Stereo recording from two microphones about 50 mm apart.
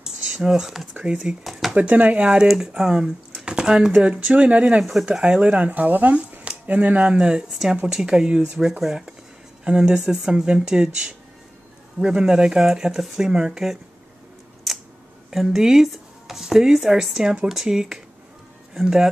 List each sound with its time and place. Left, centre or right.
0.0 s a sound: centre
0.9 s speech: right
1.4 s speech: centre
1.8 s speech: right
2.5 s speech: centre; by 4.7 s right
4.7 s speech: centre
5.3 s speech: right
14.7 s a sound: centre
15.3 s speech: centre